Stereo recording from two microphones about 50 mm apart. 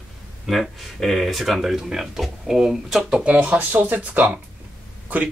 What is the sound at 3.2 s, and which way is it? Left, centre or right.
Speech, right.